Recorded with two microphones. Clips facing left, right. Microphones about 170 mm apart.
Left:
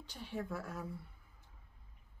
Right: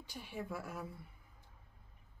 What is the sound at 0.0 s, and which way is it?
Speech, 10° right (ahead or behind).